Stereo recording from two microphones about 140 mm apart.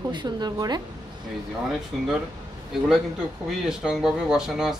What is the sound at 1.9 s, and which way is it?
Speech, centre (ahead or behind).